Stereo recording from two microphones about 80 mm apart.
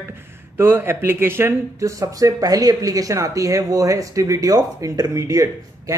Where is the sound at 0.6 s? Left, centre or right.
Right.